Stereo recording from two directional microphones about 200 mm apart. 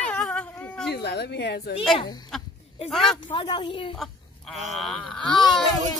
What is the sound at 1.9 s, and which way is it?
Speech, 20° left (ahead or behind).